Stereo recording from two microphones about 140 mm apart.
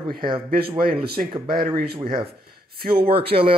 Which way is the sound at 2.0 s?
40° right (ahead or behind).